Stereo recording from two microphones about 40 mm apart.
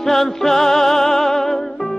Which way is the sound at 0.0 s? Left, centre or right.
Centre.